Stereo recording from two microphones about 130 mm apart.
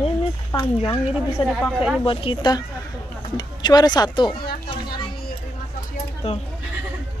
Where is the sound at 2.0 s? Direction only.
40° left (ahead or behind).